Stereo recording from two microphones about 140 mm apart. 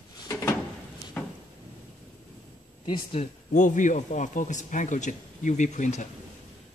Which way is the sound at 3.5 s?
65° left (ahead or behind).